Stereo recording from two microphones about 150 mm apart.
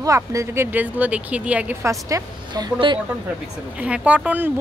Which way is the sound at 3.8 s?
10° right (ahead or behind).